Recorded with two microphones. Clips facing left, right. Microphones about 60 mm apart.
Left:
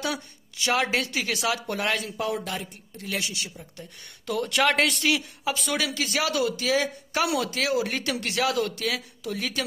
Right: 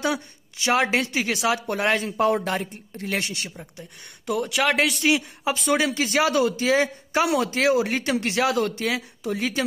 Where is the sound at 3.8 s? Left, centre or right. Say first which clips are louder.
Right 1 dB; centre.